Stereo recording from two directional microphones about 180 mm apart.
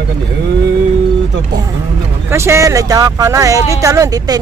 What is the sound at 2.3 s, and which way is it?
Speech, 15° right (ahead or behind).